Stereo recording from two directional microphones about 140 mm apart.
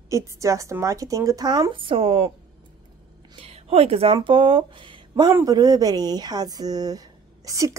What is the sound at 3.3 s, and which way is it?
Speech, 45° right (ahead or behind).